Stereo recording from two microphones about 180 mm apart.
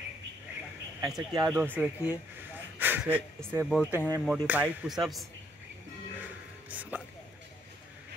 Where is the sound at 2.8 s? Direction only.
10° right (ahead or behind).